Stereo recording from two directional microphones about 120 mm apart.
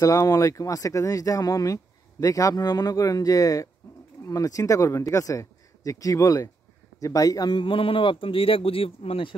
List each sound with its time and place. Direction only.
0.0 s speech: 25° left (ahead or behind)
3.8 s bird: 25° left (ahead or behind)
4.2 s speech: 25° left (ahead or behind); by 9.3 s 50° left (ahead or behind)